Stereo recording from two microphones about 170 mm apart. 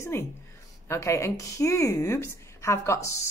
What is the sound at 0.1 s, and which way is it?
Speech, 15° left (ahead or behind).